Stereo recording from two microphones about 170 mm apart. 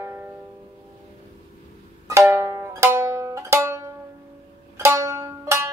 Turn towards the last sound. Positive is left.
turn(degrees=-15)  # may be behind; listen again after turning